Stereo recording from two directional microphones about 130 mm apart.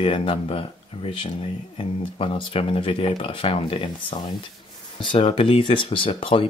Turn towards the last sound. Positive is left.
turn(degrees=45)  # may be behind; listen again after turning